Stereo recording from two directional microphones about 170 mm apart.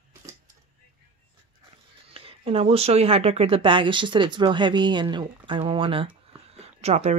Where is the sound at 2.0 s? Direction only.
35° right (ahead or behind).